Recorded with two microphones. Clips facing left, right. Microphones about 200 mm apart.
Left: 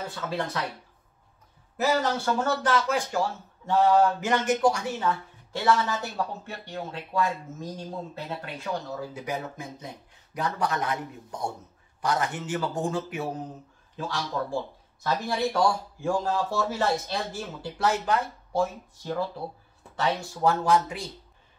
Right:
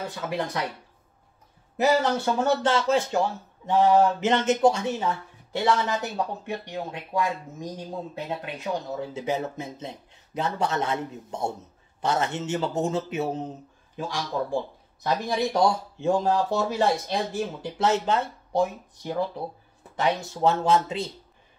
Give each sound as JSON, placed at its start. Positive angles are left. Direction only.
{"t": 0.1, "sound": "speech", "side_deg": -15}
{"t": 1.8, "sound": "speech", "side_deg": -20}